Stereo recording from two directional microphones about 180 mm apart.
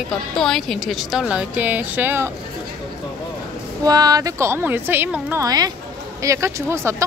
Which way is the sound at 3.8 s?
20° right (ahead or behind).